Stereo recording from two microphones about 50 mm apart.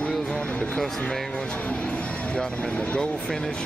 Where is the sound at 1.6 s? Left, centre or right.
Left.